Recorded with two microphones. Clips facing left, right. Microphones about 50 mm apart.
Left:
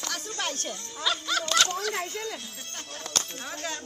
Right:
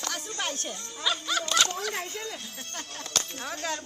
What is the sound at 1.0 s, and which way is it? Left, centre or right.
Music, centre.